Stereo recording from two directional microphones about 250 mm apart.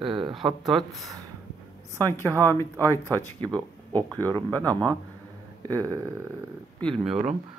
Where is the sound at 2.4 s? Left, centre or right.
Centre.